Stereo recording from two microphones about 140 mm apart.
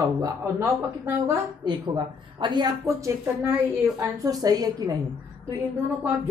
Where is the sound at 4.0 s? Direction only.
25° right (ahead or behind).